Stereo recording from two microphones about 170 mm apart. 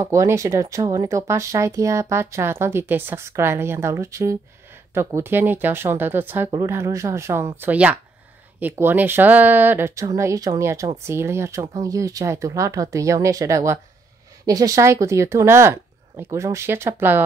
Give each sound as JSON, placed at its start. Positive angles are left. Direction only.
{"t": 0.0, "sound": "speech", "side_deg": -20}